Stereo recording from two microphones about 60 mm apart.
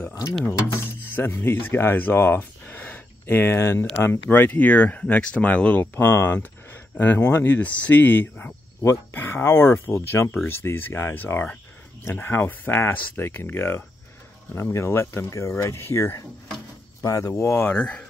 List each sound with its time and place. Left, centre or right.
0.5 s speech: left
2.7 s a sound: left
4.0 s speech: left
5.9 s speech: left
17.0 s speech: left
17.4 s speech: left
17.6 s speech: left